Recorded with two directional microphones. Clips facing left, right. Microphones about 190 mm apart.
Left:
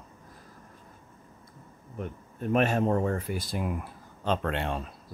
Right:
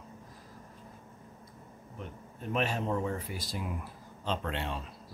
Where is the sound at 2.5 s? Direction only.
50° left (ahead or behind).